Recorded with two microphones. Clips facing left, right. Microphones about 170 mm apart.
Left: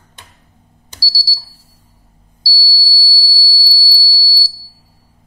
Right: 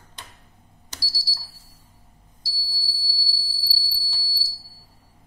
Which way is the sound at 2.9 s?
5° left (ahead or behind).